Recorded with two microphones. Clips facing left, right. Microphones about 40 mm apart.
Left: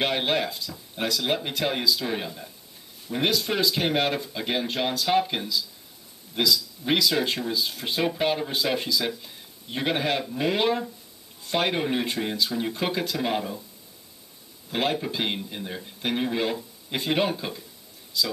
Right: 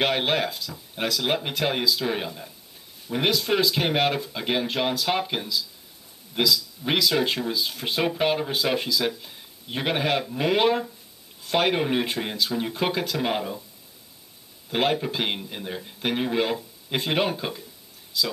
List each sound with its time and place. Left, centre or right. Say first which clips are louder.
0.0 s a man's voice: right 1 dB; centre
6.8 s speech: left 2 dB; right
7.4 s a man's voice: right 1 dB; centre
14.7 s a man's voice: right 2 dB; centre